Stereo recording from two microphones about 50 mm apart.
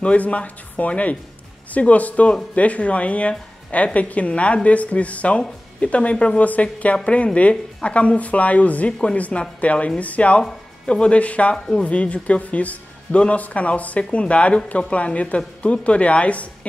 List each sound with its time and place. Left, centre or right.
0.0 s speech: left